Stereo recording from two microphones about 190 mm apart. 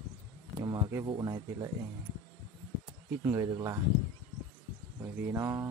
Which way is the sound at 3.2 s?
20° right (ahead or behind).